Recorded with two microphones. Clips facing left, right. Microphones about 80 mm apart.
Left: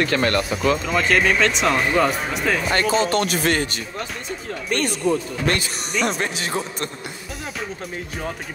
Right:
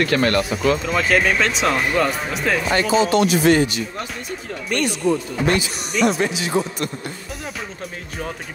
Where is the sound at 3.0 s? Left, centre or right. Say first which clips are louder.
Right 4 dB; left.